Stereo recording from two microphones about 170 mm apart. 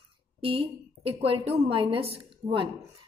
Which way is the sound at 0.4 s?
30° right (ahead or behind).